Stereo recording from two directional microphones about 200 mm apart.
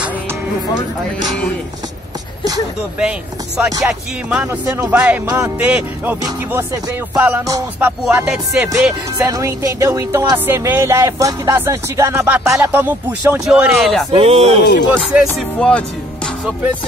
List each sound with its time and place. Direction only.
3.0 s speech: 5° right (ahead or behind)
14.1 s speech: 30° right (ahead or behind)
14.6 s speech: 55° left (ahead or behind)
15.2 s speech: 5° left (ahead or behind)